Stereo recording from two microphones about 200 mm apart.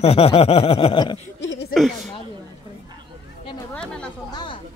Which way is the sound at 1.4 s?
65° left (ahead or behind).